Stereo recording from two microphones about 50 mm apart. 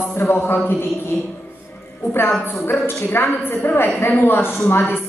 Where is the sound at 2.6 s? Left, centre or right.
Left.